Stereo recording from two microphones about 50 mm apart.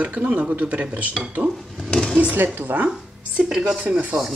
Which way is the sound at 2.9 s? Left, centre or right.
Centre.